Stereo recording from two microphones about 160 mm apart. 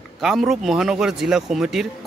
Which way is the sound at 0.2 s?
Centre (ahead or behind).